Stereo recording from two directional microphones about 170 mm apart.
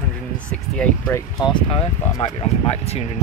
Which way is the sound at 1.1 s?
25° left (ahead or behind).